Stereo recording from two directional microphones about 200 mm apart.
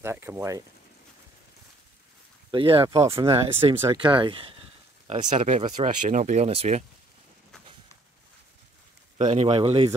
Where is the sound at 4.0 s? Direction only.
25° right (ahead or behind).